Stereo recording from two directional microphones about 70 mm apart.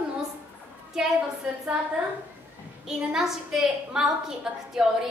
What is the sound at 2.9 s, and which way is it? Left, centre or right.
A woman's voice, centre.